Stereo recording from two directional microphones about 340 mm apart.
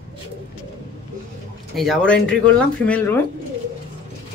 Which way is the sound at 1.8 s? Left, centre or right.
Centre.